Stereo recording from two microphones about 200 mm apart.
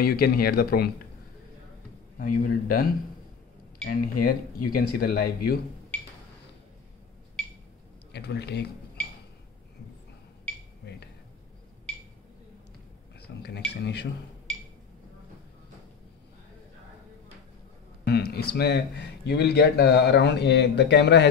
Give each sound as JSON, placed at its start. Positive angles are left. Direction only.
{"t": 0.0, "sound": "speech", "side_deg": 50}
{"t": 2.1, "sound": "speech", "side_deg": 45}
{"t": 3.9, "sound": "speech", "side_deg": 45}
{"t": 8.1, "sound": "speech", "side_deg": 55}
{"t": 10.8, "sound": "a sound", "side_deg": 60}
{"t": 13.3, "sound": "speech", "side_deg": 60}
{"t": 18.0, "sound": "a sound", "side_deg": 55}
{"t": 18.5, "sound": "speech", "side_deg": 55}